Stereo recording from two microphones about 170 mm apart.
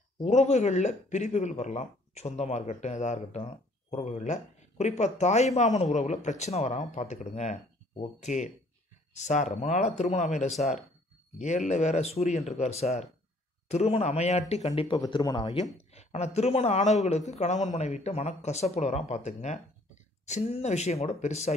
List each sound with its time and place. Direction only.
0.2 s a man's voice: 40° left (ahead or behind)
15.0 s a man's voice: 25° left (ahead or behind)